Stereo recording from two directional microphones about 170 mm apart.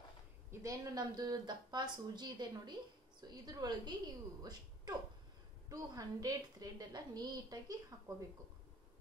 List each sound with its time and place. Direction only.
0.5 s speech: 20° right (ahead or behind)